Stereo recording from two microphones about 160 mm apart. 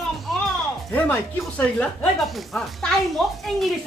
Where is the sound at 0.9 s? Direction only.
10° left (ahead or behind).